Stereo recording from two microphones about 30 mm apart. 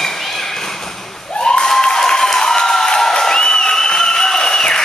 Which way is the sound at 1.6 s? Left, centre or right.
Left.